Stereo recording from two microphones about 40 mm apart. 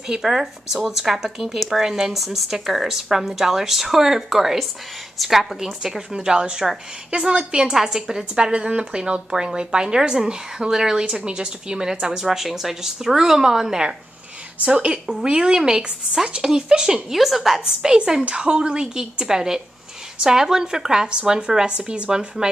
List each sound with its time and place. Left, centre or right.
0.1 s a woman's voice: centre
6.1 s a woman's voice: right
7.7 s a woman's voice: centre
8.4 s a woman's voice: right
14.6 s a woman's voice: right
17.1 s a woman's voice: centre
17.8 s a woman's voice: centre
22.4 s a woman's voice: centre